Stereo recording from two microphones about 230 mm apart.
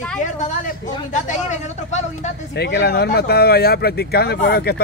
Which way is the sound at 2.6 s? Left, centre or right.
Left.